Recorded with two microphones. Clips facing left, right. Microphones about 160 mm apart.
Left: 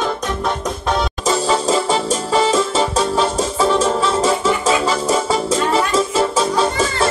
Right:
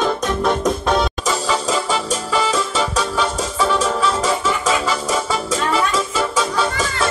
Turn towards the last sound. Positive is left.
turn(degrees=30)  # may be behind; listen again after turning